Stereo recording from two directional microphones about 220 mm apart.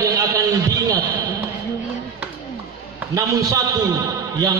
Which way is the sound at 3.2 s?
15° right (ahead or behind).